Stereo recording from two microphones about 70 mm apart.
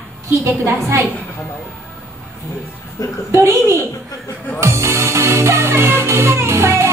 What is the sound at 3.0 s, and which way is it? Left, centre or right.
Speech, left.